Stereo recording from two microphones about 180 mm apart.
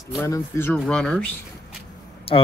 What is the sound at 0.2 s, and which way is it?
Speech, 15° left (ahead or behind).